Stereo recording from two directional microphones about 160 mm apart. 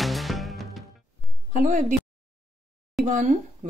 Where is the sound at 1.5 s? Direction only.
55° right (ahead or behind).